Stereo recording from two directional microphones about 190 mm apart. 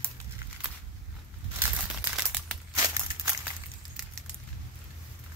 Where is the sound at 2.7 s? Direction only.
15° right (ahead or behind).